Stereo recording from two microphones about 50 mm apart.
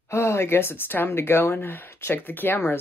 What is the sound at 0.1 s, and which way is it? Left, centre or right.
Speech, left.